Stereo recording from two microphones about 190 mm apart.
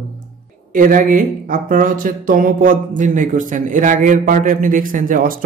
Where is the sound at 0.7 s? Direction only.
45° right (ahead or behind).